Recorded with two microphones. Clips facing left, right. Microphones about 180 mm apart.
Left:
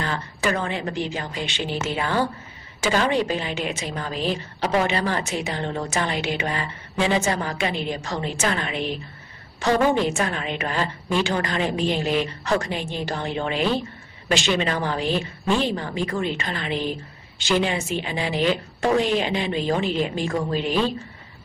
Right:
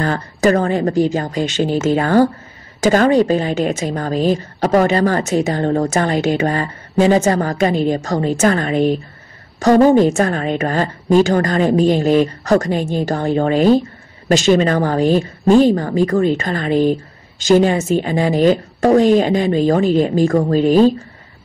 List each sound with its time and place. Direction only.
0.0 s speech: 45° right (ahead or behind)